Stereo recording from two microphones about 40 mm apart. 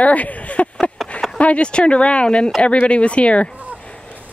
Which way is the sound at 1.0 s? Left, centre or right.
Centre.